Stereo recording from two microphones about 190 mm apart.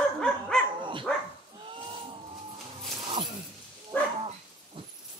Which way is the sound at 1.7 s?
25° right (ahead or behind).